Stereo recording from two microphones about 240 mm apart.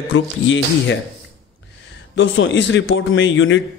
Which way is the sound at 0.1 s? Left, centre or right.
Left.